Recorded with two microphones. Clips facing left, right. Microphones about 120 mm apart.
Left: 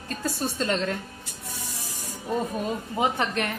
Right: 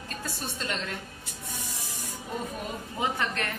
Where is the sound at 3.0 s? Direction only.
20° left (ahead or behind).